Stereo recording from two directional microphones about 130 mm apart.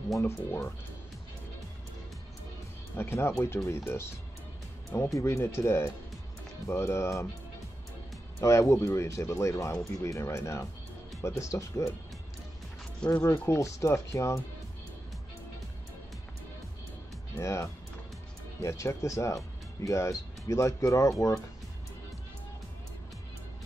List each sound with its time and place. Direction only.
0.2 s speech: 15° left (ahead or behind)
3.0 s speech: 20° left (ahead or behind)
8.4 s speech: 20° left (ahead or behind)
13.1 s speech: 25° left (ahead or behind)
17.4 s speech: 20° left (ahead or behind)